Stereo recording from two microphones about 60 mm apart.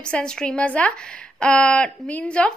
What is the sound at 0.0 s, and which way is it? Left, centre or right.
A woman's voice, centre.